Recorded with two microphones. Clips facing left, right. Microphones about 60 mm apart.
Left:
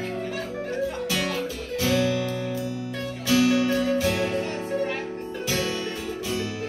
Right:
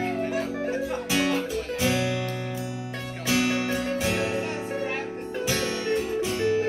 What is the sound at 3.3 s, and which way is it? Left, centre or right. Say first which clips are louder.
Music: left 4 dB; right.